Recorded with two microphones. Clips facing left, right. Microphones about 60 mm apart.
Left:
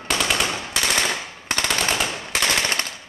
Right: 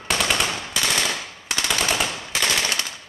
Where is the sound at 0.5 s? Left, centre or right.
Centre.